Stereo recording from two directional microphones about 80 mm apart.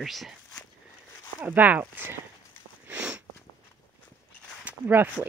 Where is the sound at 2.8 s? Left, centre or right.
Centre.